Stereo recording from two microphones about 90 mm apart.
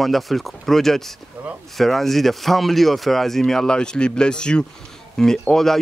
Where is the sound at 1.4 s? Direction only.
20° right (ahead or behind).